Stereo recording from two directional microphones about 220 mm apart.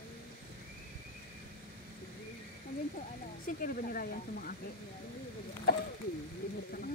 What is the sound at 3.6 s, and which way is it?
Speech, 40° left (ahead or behind).